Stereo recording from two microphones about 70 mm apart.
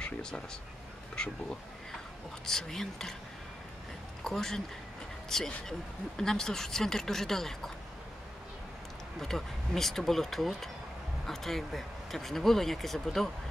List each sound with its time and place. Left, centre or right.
0.0 s speech: centre
4.2 s speech: centre
9.2 s speech: centre